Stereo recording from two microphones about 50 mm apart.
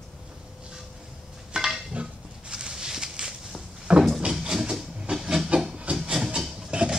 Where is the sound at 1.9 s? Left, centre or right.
Right.